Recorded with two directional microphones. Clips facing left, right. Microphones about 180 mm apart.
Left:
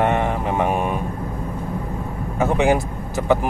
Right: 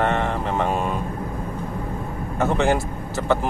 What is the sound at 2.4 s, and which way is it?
Speech, 15° left (ahead or behind).